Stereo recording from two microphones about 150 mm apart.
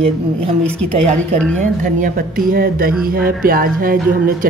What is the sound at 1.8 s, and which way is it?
A woman's voice, 70° right (ahead or behind).